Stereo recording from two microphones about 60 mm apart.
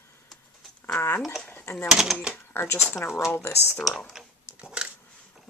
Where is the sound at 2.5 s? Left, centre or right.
Left.